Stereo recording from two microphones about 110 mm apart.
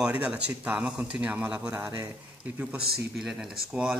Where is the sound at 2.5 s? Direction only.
10° right (ahead or behind).